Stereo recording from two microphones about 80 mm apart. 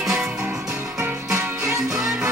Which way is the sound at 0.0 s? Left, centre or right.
Centre.